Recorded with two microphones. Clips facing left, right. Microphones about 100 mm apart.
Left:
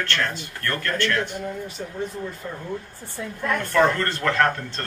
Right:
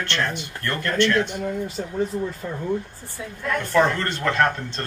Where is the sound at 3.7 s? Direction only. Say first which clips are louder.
Even; 20° right (ahead or behind).